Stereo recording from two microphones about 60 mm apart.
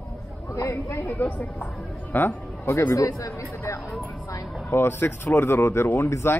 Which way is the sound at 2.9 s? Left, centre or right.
Left.